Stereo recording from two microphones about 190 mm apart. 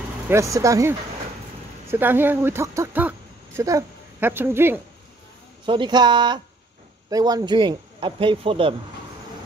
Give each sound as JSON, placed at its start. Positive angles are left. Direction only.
{"t": 0.3, "sound": "speech", "side_deg": -15}
{"t": 5.7, "sound": "speech", "side_deg": -25}